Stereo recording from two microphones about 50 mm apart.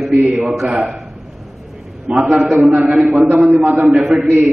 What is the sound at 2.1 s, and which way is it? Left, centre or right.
Speech, centre.